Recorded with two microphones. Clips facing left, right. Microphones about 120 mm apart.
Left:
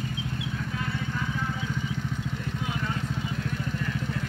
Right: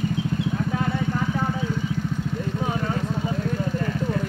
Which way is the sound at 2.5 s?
40° right (ahead or behind).